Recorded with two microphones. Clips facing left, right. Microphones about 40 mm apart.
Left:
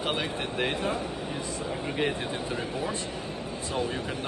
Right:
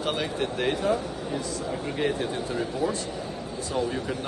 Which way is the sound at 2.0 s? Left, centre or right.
Centre.